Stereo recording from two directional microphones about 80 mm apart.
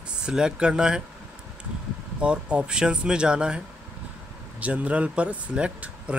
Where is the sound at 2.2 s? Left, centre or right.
Centre.